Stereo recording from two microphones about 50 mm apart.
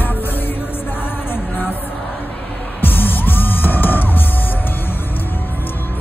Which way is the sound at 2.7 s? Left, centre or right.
Left.